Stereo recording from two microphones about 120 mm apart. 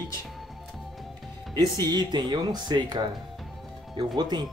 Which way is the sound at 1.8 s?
35° right (ahead or behind).